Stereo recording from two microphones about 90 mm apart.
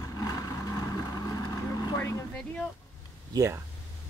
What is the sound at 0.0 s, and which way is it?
Vehicle, 40° left (ahead or behind).